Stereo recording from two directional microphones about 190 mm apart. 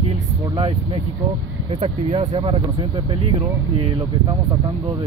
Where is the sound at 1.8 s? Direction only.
35° right (ahead or behind).